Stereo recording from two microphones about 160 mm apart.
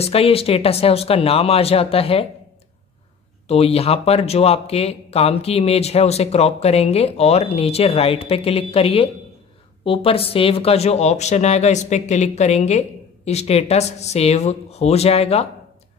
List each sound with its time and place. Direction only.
0.0 s speech: 35° left (ahead or behind)
3.4 s speech: 40° left (ahead or behind)